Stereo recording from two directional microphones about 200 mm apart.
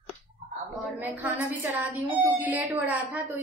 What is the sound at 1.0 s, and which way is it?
Speech, 10° right (ahead or behind).